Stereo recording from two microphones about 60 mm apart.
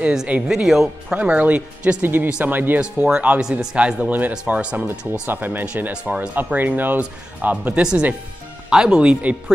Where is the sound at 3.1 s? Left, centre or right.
Centre.